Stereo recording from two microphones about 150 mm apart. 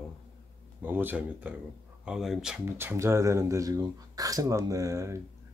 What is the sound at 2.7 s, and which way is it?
Speech, 15° right (ahead or behind).